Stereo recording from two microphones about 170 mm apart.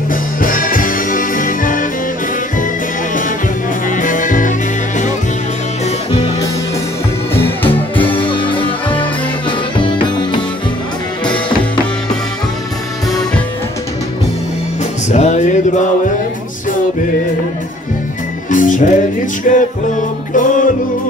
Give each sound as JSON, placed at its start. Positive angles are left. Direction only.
{"t": 0.1, "sound": "music", "side_deg": 55}
{"t": 3.9, "sound": "music", "side_deg": 50}
{"t": 7.3, "sound": "music", "side_deg": 10}
{"t": 8.2, "sound": "music", "side_deg": 30}
{"t": 9.8, "sound": "music", "side_deg": 30}
{"t": 15.0, "sound": "music", "side_deg": 45}
{"t": 18.5, "sound": "music", "side_deg": 50}